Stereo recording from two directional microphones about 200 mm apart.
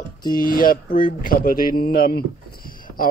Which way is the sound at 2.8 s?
45° left (ahead or behind).